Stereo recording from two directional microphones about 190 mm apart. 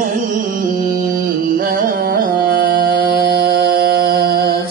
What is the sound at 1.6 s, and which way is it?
Music, 55° right (ahead or behind).